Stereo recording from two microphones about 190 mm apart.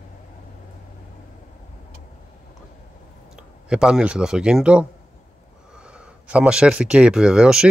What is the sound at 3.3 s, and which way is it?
Speech, 5° right (ahead or behind).